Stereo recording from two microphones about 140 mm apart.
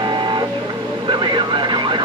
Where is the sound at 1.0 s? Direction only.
35° right (ahead or behind).